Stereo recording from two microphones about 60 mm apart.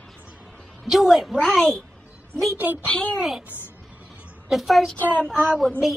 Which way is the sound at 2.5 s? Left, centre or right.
Right.